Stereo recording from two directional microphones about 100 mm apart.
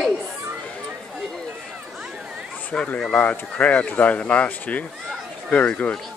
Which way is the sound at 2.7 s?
10° left (ahead or behind).